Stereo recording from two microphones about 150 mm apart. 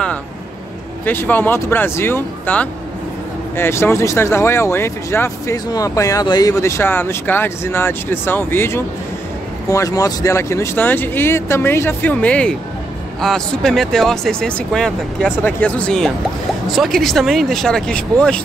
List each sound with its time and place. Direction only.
1.0 s speech: 15° left (ahead or behind)